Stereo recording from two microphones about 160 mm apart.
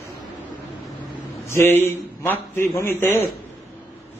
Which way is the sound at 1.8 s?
15° left (ahead or behind).